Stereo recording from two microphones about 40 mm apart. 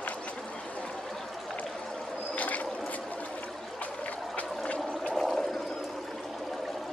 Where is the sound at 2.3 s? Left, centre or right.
Left.